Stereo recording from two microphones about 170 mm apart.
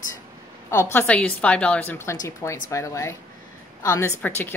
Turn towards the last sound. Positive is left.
turn(degrees=10)  # may be behind; listen again after turning